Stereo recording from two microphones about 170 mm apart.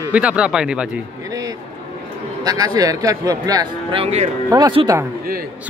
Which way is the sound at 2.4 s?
20° right (ahead or behind).